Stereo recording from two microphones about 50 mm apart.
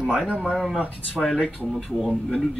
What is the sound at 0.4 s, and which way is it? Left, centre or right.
Speech, centre.